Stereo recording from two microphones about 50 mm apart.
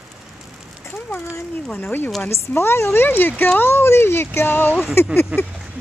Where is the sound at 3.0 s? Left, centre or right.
Left.